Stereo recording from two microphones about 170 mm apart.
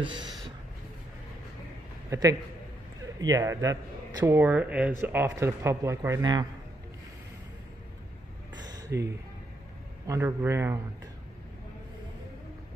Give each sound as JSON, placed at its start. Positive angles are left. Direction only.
{"t": 0.0, "sound": "speech", "side_deg": -30}
{"t": 2.0, "sound": "a man's voice", "side_deg": -20}
{"t": 8.5, "sound": "a sound", "side_deg": -20}
{"t": 10.0, "sound": "speech", "side_deg": -15}